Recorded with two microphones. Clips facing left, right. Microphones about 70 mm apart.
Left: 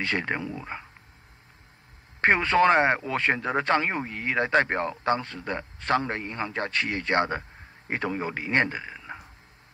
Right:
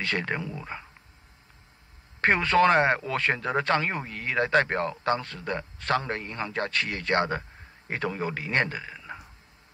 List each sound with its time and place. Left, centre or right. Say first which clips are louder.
0.0 s speech: left 1 dB; centre
2.2 s speech: left 1 dB; centre